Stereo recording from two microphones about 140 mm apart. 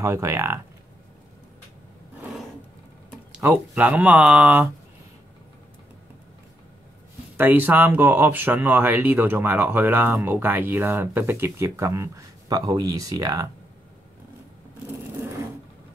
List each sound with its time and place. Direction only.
0.0 s speech: 20° right (ahead or behind)
3.4 s speech: 10° right (ahead or behind)
7.3 s speech: 15° right (ahead or behind)
15.1 s sewing machine: 15° right (ahead or behind)